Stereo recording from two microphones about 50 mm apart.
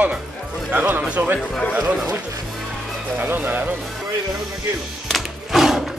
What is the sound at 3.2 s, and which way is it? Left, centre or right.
Speech, right.